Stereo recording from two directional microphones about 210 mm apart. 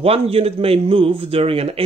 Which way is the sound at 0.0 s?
25° right (ahead or behind).